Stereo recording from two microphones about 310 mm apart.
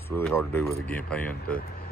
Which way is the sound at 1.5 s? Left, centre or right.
Left.